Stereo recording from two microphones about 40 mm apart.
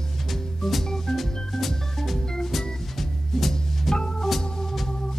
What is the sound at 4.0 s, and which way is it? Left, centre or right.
Organ, centre.